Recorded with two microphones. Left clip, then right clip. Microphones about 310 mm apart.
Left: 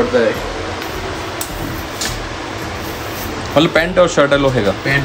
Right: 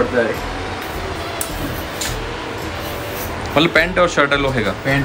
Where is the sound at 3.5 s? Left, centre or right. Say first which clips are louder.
Left 1 dB; centre.